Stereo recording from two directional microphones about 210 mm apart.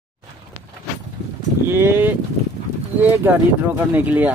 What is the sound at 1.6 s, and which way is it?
Speech, 10° right (ahead or behind).